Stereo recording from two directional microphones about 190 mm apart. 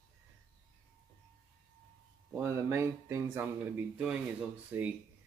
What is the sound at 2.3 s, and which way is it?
Speech, 15° right (ahead or behind).